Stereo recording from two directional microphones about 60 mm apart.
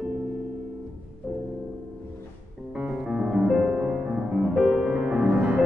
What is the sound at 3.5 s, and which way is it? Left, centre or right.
Music, centre.